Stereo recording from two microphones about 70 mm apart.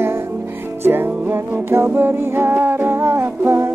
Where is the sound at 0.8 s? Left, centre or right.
Right.